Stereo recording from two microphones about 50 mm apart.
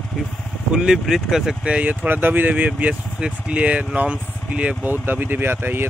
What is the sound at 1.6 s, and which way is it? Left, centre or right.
Speech, right.